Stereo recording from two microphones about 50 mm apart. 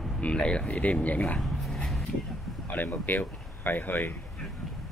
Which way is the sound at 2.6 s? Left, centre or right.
Left.